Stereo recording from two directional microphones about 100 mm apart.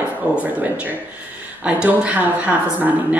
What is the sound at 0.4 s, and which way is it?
A woman's voice, 15° right (ahead or behind).